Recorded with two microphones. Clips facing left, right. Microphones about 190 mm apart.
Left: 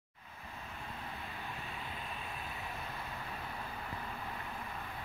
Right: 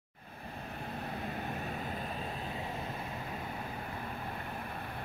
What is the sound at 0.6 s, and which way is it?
Vehicle, 45° right (ahead or behind).